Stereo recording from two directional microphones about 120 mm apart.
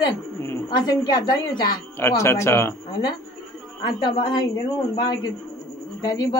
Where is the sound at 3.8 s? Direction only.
35° left (ahead or behind).